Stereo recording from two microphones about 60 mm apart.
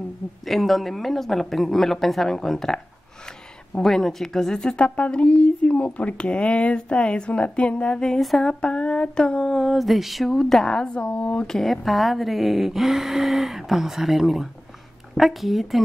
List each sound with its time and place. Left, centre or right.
0.5 s a woman's voice: centre
8.2 s speech: centre
8.5 s a sound: centre
9.5 s speech: centre; by 11.4 s left
11.4 s speech: centre